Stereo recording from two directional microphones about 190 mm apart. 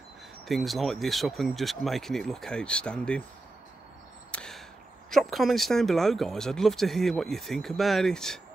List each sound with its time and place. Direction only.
0.5 s speech: centre (ahead or behind)
4.3 s a sound: 5° left (ahead or behind)
5.1 s speech: centre (ahead or behind)